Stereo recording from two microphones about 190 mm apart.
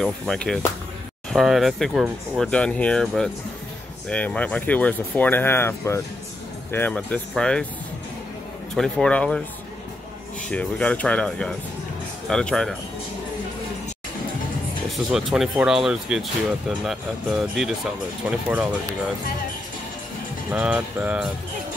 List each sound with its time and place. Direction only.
0.0 s speech: 5° left (ahead or behind)
8.7 s speech: 5° left (ahead or behind)
10.5 s speech: 5° left (ahead or behind)
14.9 s speech: centre (ahead or behind)
20.5 s music: 5° right (ahead or behind)